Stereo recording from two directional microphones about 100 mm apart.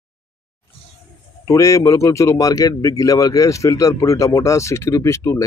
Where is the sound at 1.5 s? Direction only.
30° left (ahead or behind).